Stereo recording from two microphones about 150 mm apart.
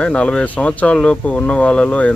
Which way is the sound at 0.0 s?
5° left (ahead or behind).